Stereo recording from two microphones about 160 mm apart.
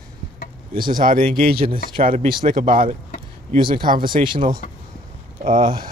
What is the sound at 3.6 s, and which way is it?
Speech, 30° right (ahead or behind).